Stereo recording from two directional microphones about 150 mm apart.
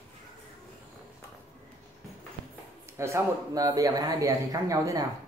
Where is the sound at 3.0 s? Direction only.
20° right (ahead or behind).